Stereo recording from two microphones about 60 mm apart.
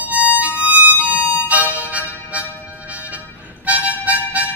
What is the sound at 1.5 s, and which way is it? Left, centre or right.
Music, right.